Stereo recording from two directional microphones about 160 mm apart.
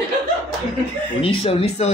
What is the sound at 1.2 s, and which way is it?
Speech, 35° left (ahead or behind).